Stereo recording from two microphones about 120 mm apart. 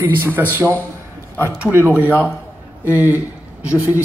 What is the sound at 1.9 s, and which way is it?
Speech, 20° left (ahead or behind).